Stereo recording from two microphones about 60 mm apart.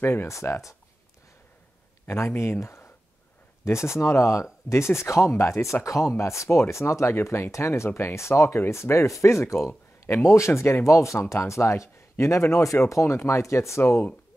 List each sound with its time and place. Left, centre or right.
0.0 s speech: left
0.3 s speech: left
2.0 s speech: left